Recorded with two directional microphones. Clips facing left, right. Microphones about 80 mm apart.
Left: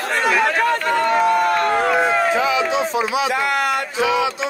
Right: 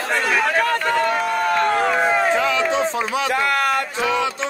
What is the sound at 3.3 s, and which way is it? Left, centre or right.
Speech, right.